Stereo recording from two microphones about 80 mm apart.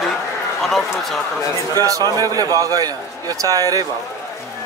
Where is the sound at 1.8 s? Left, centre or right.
Right.